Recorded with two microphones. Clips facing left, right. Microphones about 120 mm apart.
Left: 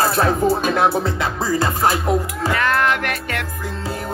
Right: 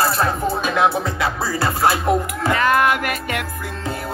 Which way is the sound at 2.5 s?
10° right (ahead or behind).